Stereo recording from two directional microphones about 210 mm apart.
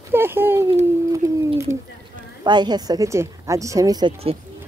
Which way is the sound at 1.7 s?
15° right (ahead or behind).